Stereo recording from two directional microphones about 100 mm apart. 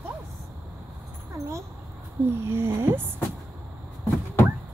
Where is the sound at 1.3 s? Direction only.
30° right (ahead or behind).